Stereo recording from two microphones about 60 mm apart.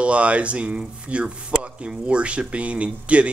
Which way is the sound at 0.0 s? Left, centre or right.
Right.